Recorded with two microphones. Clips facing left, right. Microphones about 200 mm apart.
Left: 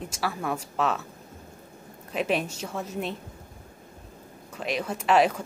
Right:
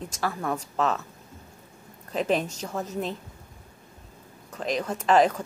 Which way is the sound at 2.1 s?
5° left (ahead or behind).